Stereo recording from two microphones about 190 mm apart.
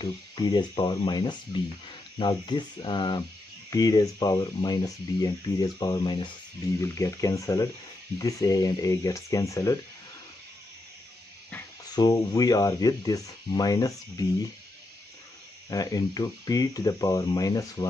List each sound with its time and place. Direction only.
0.0 s speech: 20° left (ahead or behind)
11.9 s speech: 20° left (ahead or behind)
15.7 s speech: 20° left (ahead or behind)